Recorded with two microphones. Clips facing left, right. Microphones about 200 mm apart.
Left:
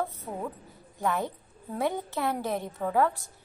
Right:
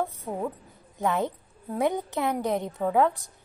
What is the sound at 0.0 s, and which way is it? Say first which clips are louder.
A woman's voice: right 3 dB; 15° right (ahead or behind).